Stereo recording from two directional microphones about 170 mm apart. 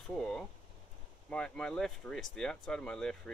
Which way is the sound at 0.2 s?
5° left (ahead or behind).